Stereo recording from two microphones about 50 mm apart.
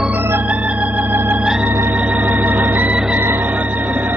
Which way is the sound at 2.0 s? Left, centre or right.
Right.